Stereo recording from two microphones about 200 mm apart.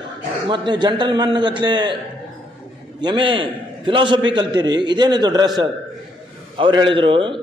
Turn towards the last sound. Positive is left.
turn(degrees=-25)  # may be behind; listen again after turning